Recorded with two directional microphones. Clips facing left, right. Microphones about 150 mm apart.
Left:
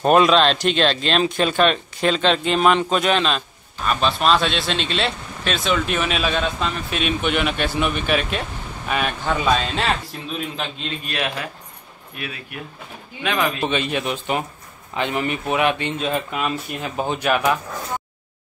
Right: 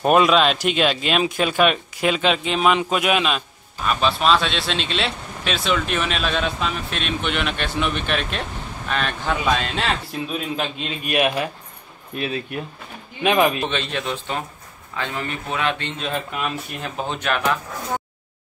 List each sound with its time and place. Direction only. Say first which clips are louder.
0.0 s speech: left 1 dB; 5° right (ahead or behind)
11.1 s speech: right 7 dB; 15° right (ahead or behind)
12.2 s speech: right 7 dB; 30° right (ahead or behind)
13.2 s speech: right 5 dB; 20° right (ahead or behind)
13.7 s speech: left 3 dB; 10° left (ahead or behind)
16.0 s speech: left 3 dB; 5° left (ahead or behind)